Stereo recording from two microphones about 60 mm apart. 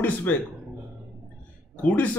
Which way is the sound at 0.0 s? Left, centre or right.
Left.